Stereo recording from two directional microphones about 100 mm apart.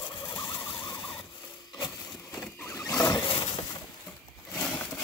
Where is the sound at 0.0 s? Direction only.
60° left (ahead or behind).